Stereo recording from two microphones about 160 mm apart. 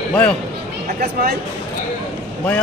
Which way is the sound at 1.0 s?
75° right (ahead or behind).